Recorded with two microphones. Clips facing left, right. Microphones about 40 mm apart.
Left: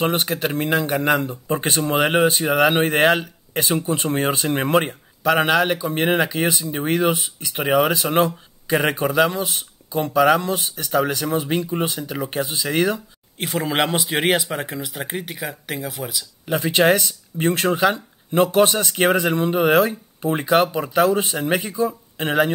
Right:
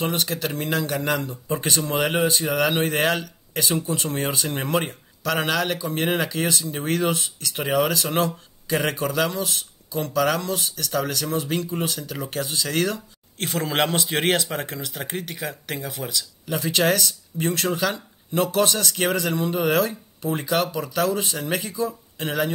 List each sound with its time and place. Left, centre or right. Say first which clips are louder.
0.0 s speech: left 4 dB; left
5.2 s speech: left 6 dB; centre
13.4 s speech: left 2 dB; centre
16.4 s speech: left 5 dB; left